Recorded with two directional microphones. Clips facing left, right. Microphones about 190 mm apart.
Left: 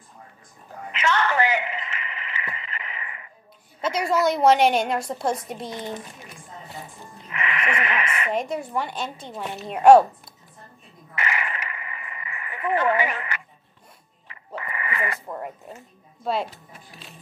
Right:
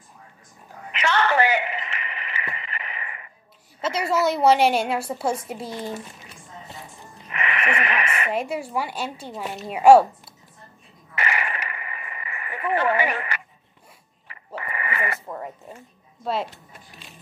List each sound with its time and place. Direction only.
1.0 s radio: 30° right (ahead or behind)
3.9 s a woman's voice: 5° right (ahead or behind)
7.3 s a sound: 25° right (ahead or behind)
8.3 s a woman's voice: 5° right (ahead or behind)
11.1 s radio: 30° right (ahead or behind)
12.9 s speech: 30° right (ahead or behind)
14.5 s a sound: 25° right (ahead or behind)
15.1 s a woman's voice: centre (ahead or behind)